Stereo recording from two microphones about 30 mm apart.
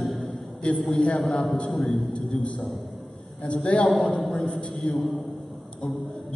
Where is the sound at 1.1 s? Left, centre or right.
Centre.